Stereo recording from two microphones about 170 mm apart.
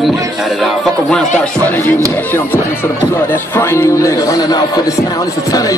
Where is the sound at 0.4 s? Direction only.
Centre (ahead or behind).